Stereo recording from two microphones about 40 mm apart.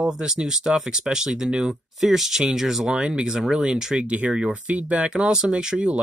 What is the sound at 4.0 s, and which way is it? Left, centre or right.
Speech, right.